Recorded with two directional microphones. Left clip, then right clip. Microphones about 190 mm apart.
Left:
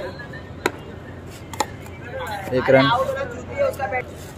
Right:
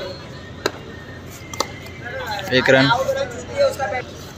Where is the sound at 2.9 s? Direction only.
55° right (ahead or behind).